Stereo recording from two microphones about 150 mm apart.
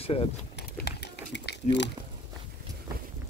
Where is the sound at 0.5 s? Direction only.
90° left.